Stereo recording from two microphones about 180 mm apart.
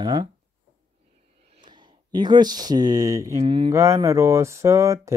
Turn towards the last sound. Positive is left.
turn(degrees=-15)  # may be behind; listen again after turning